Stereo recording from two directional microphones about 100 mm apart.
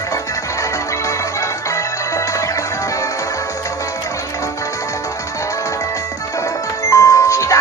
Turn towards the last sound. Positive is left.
turn(degrees=30)  # may be behind; listen again after turning